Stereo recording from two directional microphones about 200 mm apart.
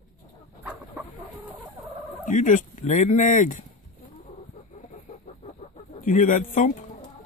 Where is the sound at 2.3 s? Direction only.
40° left (ahead or behind).